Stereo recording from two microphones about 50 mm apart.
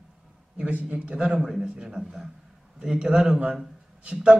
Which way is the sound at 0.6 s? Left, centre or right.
Right.